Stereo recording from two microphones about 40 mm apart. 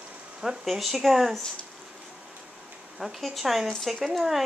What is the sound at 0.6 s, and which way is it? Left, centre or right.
Speech, centre.